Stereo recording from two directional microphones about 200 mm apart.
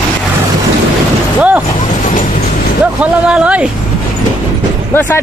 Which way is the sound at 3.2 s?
5° right (ahead or behind).